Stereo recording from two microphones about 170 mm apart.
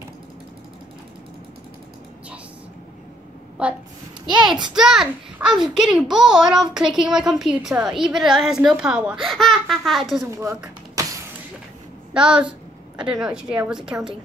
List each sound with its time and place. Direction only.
3.6 s a woman's voice: 10° right (ahead or behind)
11.0 s vehicle: 20° right (ahead or behind)
12.1 s a woman's voice: 5° right (ahead or behind)